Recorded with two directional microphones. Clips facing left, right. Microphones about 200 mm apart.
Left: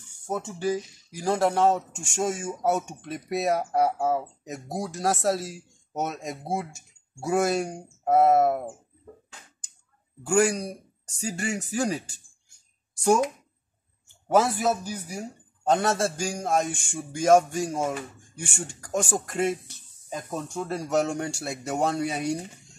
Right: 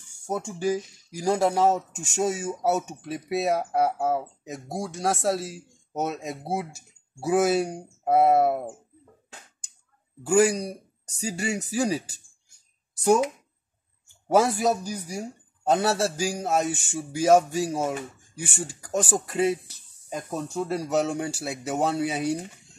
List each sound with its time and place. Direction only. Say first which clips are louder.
0.3 s speech: right 1 dB; 10° right (ahead or behind)
10.2 s speech: right 2 dB; 5° right (ahead or behind)
14.4 s speech: right 2 dB; 10° right (ahead or behind)